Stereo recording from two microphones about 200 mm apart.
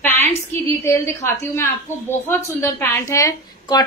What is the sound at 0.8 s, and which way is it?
A woman's voice, 10° left (ahead or behind).